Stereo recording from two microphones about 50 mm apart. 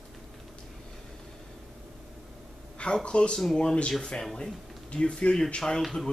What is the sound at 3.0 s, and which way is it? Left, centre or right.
Speech, centre.